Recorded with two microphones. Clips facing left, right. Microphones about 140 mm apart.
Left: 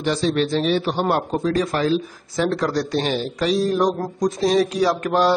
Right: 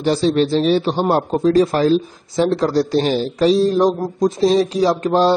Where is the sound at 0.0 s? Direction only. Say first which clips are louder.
Right 5 dB; 35° right (ahead or behind).